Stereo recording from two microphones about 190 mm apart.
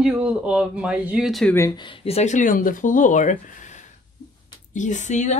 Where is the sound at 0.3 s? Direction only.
5° right (ahead or behind).